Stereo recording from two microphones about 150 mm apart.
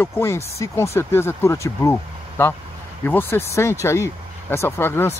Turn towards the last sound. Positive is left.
turn(degrees=15)  # may be behind; listen again after turning